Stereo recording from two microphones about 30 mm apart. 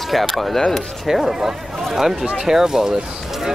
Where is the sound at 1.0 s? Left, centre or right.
Centre.